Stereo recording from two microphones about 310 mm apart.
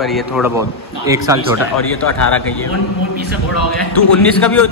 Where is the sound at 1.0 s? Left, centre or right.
Centre.